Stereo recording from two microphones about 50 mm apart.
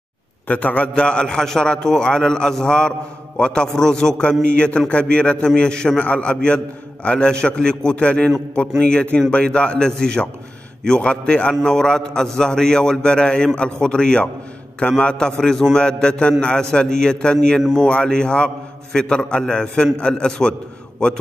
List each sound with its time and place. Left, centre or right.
0.5 s a man's voice: left
0.9 s a man's voice: centre